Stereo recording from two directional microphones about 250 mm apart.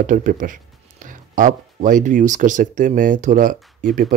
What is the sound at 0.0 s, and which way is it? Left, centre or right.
Speech, right.